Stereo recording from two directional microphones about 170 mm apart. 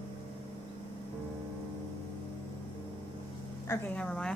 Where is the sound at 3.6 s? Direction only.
10° left (ahead or behind).